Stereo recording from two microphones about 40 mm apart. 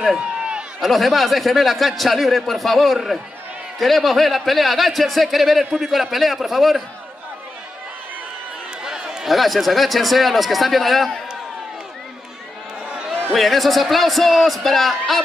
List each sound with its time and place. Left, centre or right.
0.2 s run: right
0.7 s a man's voice: centre
8.8 s run: centre
9.3 s a man's voice: centre
13.3 s a man's voice: centre